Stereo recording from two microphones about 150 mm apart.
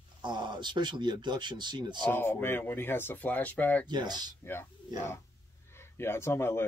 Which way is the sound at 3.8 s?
30° right (ahead or behind).